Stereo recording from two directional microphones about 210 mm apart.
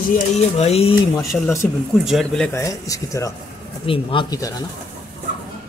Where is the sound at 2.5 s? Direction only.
15° left (ahead or behind).